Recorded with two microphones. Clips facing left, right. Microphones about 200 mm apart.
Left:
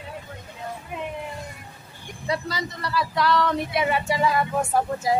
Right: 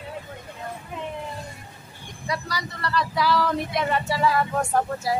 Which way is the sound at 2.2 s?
25° left (ahead or behind).